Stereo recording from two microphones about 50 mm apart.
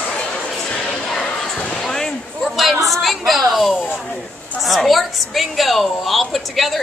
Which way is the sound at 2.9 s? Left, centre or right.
Centre.